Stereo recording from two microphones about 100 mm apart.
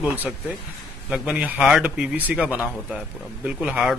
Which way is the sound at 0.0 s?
15° right (ahead or behind).